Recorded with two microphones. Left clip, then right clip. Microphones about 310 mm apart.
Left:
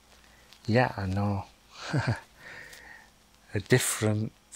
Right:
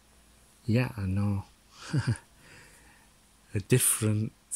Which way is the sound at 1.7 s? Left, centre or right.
Centre.